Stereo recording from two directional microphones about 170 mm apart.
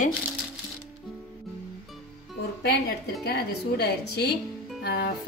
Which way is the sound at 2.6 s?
70° left (ahead or behind).